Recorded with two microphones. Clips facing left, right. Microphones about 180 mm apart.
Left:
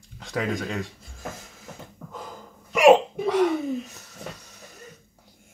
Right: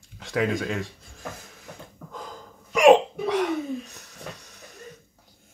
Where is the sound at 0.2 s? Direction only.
Centre (ahead or behind).